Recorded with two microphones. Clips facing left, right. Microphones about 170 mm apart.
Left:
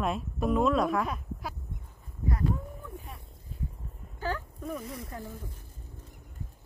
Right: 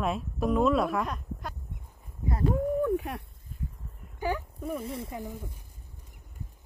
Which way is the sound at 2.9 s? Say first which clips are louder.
Right 15 dB; 75° right (ahead or behind).